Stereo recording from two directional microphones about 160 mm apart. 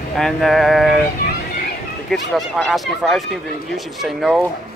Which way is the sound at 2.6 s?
Centre (ahead or behind).